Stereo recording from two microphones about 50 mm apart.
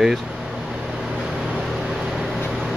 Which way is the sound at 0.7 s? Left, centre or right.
Centre.